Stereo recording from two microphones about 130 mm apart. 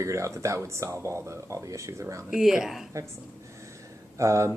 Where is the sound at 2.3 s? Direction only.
5° right (ahead or behind).